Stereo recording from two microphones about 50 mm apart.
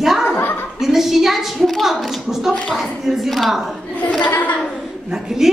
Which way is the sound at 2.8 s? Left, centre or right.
Centre.